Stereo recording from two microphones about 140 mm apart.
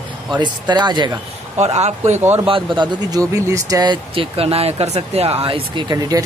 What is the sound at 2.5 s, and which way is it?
Speech, 35° right (ahead or behind).